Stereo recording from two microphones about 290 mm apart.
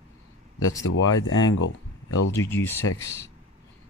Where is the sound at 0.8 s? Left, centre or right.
Left.